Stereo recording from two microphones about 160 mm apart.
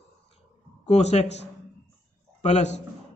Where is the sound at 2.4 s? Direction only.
45° left (ahead or behind).